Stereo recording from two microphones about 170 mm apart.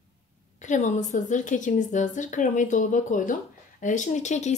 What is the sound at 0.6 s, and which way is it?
A woman's voice, 45° left (ahead or behind).